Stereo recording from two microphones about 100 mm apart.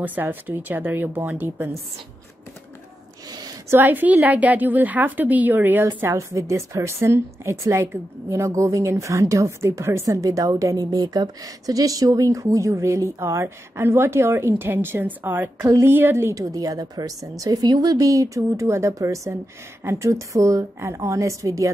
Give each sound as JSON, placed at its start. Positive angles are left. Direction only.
{"t": 0.0, "sound": "a woman's voice", "side_deg": -20}
{"t": 3.3, "sound": "a sound", "side_deg": -40}
{"t": 3.7, "sound": "a woman's voice", "side_deg": -20}
{"t": 15.6, "sound": "a woman's voice", "side_deg": -30}